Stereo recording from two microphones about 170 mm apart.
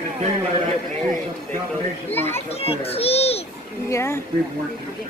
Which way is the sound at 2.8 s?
35° left (ahead or behind).